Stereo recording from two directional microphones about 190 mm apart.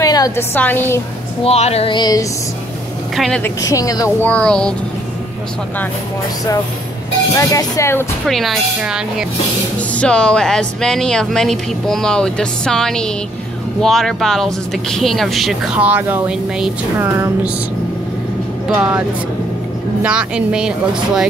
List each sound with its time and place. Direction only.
0.0 s a woman's voice: 20° left (ahead or behind)
1.4 s female singing: 35° left (ahead or behind)
3.2 s speech: 5° left (ahead or behind)
3.6 s speech: 20° left (ahead or behind)
4.3 s speech: 5° left (ahead or behind)
7.3 s speech: 15° left (ahead or behind)
8.3 s speech: centre (ahead or behind)
18.7 s speech: 5° right (ahead or behind)